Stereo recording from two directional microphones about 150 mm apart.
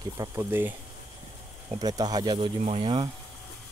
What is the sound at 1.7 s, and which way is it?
Speech, 25° right (ahead or behind).